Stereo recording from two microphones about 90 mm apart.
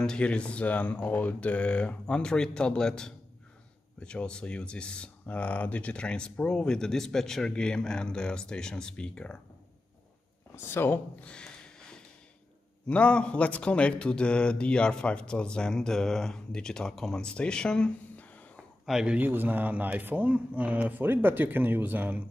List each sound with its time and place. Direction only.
0.0 s speech: 10° left (ahead or behind)
10.5 s speech: 25° left (ahead or behind); by 18.2 s 10° left (ahead or behind)
18.9 s speech: 5° right (ahead or behind)
19.1 s speech: 20° right (ahead or behind)